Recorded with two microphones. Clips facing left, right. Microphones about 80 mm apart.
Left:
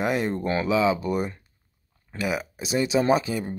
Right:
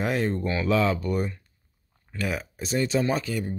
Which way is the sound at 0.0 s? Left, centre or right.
Centre.